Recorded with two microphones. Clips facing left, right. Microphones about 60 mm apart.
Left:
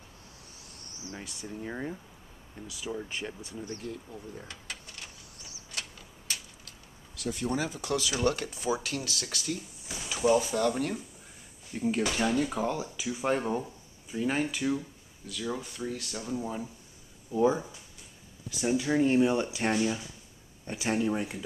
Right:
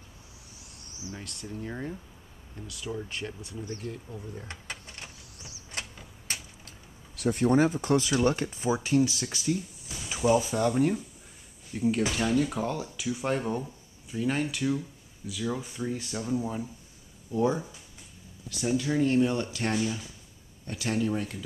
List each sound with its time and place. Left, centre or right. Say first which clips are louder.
0.7 s cricket: right 2 dB; centre
1.1 s speech: even; centre
3.7 s speech: right 1 dB; right
4.1 s speech: right 2 dB; centre
4.5 s a sound: right 2 dB; right
5.7 s vehicle: right 2 dB; right
7.2 s speech: right 8 dB; right; by 10.7 s centre
10.7 s speech: right 5 dB; centre
15.2 s speech: right 2 dB; centre
15.6 s speech: right 3 dB; centre